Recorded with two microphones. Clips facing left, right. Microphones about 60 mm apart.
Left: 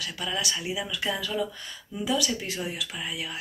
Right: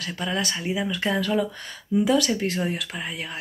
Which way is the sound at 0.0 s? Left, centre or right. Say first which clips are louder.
Right 4 dB; right.